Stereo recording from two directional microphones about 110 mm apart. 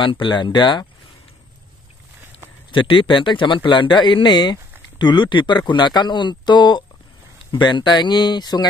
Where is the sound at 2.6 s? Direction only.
50° left (ahead or behind).